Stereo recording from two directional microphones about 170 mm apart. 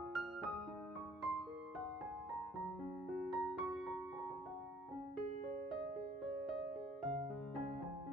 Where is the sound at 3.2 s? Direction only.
Centre (ahead or behind).